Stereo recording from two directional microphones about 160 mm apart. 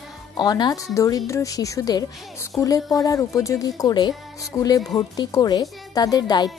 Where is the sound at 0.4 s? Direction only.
25° left (ahead or behind).